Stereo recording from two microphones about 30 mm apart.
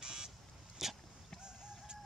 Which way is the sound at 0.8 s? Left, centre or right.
Centre.